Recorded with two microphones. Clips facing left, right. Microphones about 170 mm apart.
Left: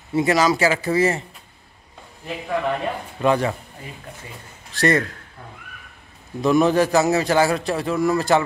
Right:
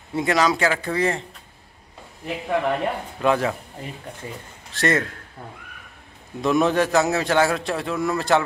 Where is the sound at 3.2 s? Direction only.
Centre (ahead or behind).